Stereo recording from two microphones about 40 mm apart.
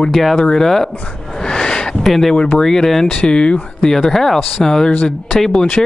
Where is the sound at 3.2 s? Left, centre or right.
Left.